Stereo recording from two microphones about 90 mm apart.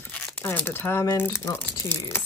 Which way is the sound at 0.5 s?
20° left (ahead or behind).